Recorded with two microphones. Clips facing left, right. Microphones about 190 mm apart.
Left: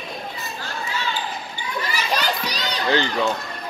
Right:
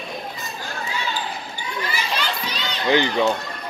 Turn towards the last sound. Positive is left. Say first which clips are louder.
# right 2 dB
turn(degrees=-15)  # may be behind; listen again after turning